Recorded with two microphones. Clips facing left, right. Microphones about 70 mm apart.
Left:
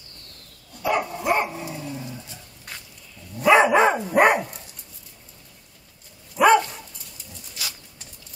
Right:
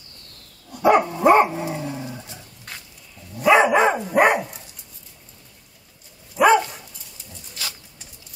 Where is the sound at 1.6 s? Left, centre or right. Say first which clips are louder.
Right 5 dB; right.